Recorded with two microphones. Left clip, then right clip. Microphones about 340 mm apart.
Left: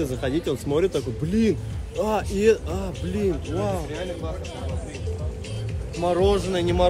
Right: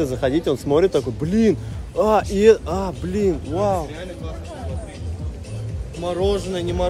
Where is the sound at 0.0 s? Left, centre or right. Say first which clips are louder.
Right 5 dB; centre.